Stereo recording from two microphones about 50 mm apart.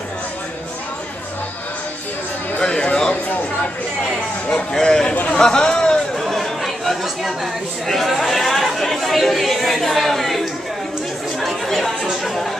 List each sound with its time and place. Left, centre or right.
2.6 s a sound: centre
4.5 s speech: centre
6.1 s chatter: centre
7.8 s speech: centre
11.3 s chatter: centre